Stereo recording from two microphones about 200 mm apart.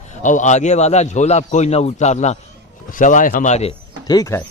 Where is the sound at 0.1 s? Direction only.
40° left (ahead or behind).